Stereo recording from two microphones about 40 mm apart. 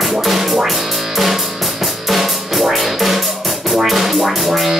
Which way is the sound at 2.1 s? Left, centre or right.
Centre.